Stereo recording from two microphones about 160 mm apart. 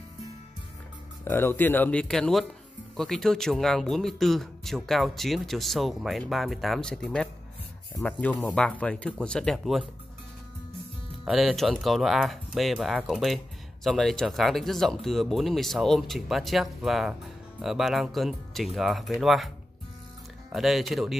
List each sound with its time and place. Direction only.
1.2 s speech: 15° left (ahead or behind)
11.2 s speech: centre (ahead or behind)
20.5 s speech: centre (ahead or behind)